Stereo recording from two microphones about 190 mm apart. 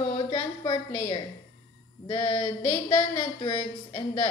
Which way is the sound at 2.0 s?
25° left (ahead or behind).